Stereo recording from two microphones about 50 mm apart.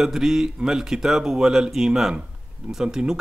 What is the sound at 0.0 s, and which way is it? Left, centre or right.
A man's voice, centre.